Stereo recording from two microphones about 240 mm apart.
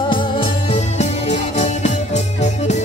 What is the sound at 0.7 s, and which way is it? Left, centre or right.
Music, left.